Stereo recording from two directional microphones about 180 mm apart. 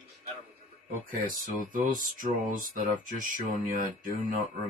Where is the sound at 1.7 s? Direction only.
50° right (ahead or behind).